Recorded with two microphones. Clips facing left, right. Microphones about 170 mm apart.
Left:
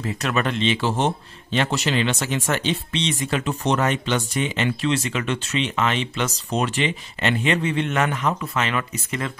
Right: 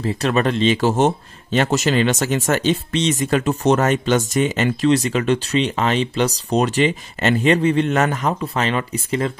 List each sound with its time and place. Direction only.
0.0 s speech: 35° right (ahead or behind)